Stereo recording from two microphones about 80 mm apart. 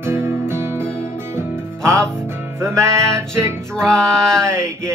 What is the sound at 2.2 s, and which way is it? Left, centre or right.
Music, right.